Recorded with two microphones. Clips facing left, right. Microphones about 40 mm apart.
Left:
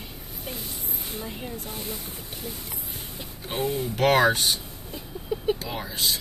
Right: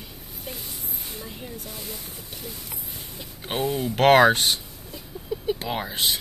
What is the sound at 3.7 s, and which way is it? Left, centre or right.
Speech, right.